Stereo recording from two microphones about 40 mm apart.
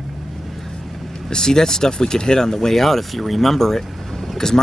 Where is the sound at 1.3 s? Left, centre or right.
Centre.